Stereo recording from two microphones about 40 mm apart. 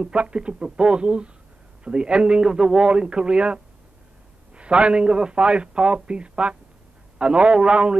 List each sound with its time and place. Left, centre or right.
0.0 s a man's voice: right